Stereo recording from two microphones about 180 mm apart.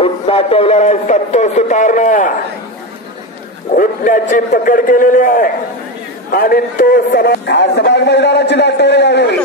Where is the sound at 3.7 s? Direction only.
50° left (ahead or behind).